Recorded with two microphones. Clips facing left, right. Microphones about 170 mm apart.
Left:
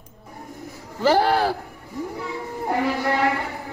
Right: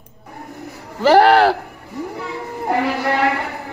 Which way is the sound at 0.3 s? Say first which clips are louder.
Right 4 dB; 70° right (ahead or behind).